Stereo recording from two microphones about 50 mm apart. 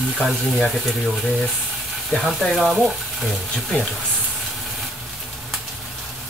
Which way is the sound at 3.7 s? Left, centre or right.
Left.